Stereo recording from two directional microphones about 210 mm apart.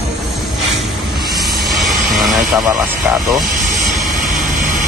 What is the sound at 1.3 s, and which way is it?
Vehicle, centre (ahead or behind).